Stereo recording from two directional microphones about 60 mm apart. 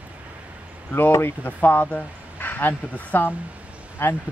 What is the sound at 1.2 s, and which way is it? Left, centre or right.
Speech, left.